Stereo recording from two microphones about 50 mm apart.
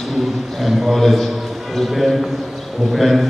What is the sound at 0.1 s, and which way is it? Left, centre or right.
A man's voice, centre.